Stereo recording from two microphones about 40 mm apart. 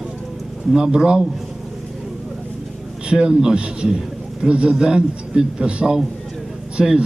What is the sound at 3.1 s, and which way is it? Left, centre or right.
A man's voice, right.